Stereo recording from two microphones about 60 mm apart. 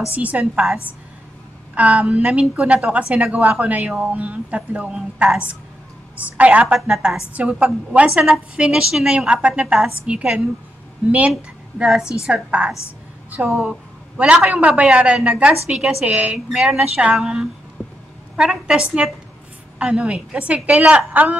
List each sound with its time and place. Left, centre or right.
0.1 s a woman's voice: right
1.8 s a woman's voice: right
6.1 s a woman's voice: right
11.8 s a woman's voice: centre
14.3 s a woman's voice: right
17.8 s vehicle: left
18.3 s a woman's voice: centre; by 21.4 s right